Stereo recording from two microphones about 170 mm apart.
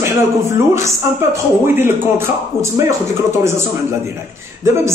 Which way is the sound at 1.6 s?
15° right (ahead or behind).